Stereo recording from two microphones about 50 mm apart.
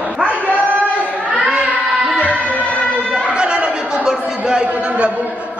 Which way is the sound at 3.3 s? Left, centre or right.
Right.